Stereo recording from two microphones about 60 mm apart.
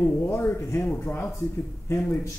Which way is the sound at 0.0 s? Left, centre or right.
Left.